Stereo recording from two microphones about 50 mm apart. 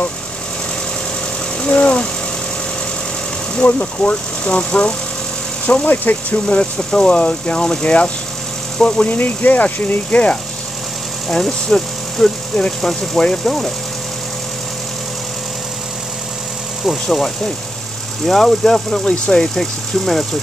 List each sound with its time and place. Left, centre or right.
1.6 s a sound: left
3.6 s speech: left
5.9 s speech: left
7.5 s speech: centre
9.1 s speech: left
11.2 s speech: centre
16.8 s speech: centre